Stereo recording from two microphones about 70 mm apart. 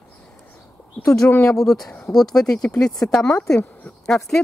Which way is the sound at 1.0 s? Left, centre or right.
Left.